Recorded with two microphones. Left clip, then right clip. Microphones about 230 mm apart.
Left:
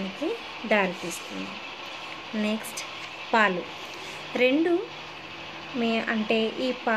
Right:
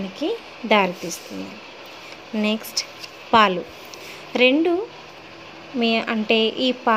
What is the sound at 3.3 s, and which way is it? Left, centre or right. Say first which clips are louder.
Speech: right 7 dB; right.